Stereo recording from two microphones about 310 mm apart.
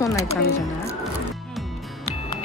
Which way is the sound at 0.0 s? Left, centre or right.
Centre.